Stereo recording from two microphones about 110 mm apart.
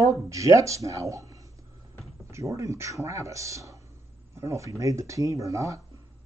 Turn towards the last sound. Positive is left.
turn(degrees=-30)  # may be behind; listen again after turning